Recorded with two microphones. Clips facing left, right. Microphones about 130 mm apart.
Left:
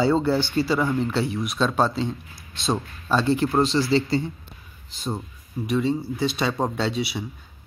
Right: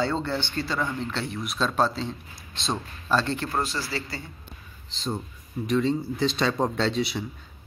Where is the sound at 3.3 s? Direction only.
25° left (ahead or behind).